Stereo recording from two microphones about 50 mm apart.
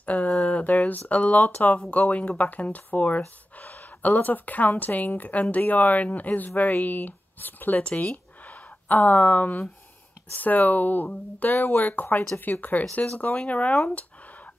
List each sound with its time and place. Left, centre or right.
0.0 s speech: left
11.5 s speech: left
11.8 s speech: left